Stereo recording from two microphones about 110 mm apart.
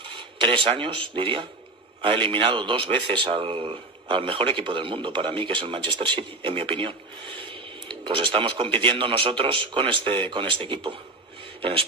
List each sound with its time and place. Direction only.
0.1 s rub: 50° right (ahead or behind)
2.0 s a man's voice: 55° right (ahead or behind)